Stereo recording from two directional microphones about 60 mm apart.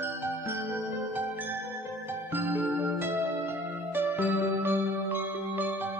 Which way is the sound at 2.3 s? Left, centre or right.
Right.